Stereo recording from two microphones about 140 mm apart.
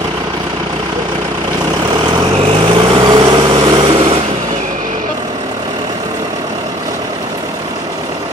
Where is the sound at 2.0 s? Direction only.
40° right (ahead or behind).